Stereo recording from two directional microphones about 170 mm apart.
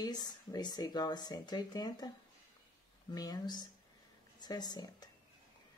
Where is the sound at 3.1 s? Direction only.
25° left (ahead or behind).